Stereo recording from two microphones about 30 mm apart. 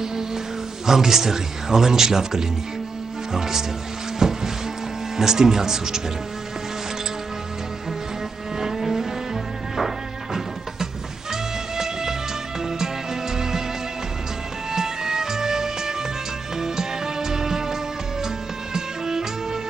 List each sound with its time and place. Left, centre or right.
0.0 s music: centre
0.8 s speech: centre
4.2 s music: centre
5.1 s speech: centre
8.5 s music: centre
14.7 s music: centre